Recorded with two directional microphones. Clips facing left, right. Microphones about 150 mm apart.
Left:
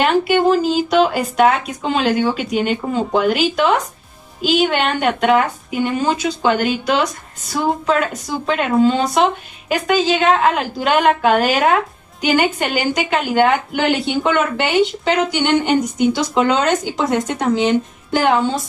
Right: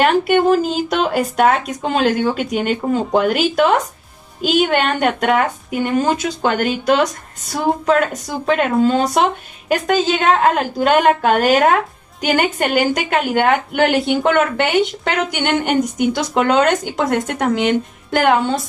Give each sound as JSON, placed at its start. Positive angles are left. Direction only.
{"t": 0.0, "sound": "speech", "side_deg": -45}